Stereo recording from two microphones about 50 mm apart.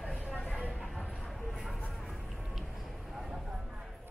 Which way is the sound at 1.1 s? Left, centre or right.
Centre.